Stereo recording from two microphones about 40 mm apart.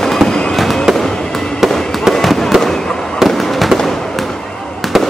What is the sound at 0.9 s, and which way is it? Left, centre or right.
Fireworks, centre.